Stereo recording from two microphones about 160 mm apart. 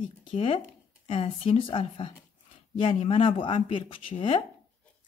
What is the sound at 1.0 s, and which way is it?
Speech, 40° left (ahead or behind).